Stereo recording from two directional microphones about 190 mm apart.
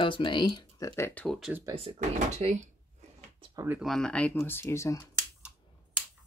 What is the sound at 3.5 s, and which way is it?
Speech, 15° right (ahead or behind).